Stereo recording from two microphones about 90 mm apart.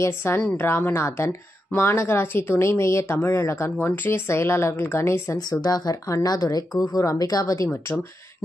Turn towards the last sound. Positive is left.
turn(degrees=40)  # may be behind; listen again after turning